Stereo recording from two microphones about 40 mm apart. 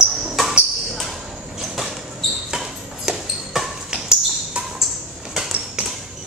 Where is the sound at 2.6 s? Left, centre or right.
Centre.